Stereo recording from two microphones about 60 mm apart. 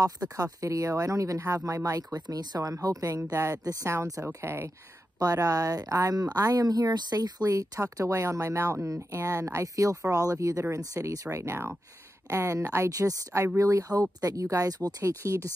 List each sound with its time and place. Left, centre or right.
0.0 s speech: right
2.1 s speech: right
5.2 s speech: right
11.3 s speech: right
12.9 s speech: right